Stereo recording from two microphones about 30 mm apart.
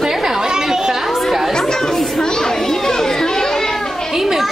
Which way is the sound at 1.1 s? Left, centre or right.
Centre.